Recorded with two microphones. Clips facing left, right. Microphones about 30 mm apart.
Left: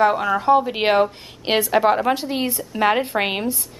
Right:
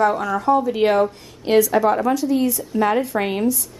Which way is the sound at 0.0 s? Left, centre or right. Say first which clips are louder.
Left 1 dB; left.